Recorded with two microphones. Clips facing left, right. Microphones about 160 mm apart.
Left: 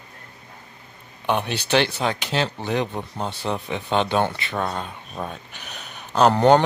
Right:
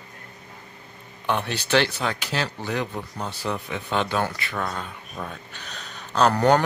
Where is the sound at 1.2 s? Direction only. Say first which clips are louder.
Left 2 dB; 15° left (ahead or behind).